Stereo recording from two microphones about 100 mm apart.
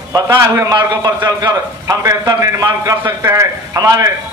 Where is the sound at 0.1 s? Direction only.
40° right (ahead or behind).